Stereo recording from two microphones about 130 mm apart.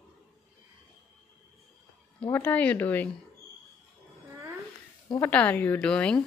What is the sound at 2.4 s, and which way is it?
Speech, 10° left (ahead or behind).